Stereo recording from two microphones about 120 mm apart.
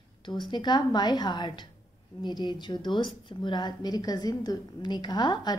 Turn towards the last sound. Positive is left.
turn(degrees=35)  # may be behind; listen again after turning